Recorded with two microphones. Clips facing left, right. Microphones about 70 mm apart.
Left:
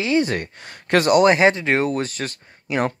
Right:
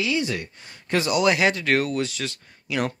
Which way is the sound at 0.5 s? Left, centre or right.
Left.